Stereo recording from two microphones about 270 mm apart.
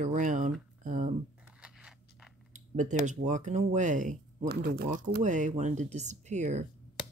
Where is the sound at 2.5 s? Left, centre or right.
Right.